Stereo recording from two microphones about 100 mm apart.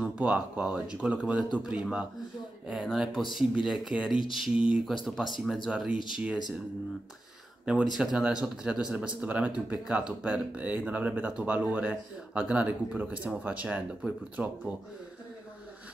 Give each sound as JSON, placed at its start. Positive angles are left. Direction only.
{"t": 0.0, "sound": "speech", "side_deg": -10}
{"t": 5.9, "sound": "speech", "side_deg": 55}
{"t": 7.8, "sound": "speech", "side_deg": -5}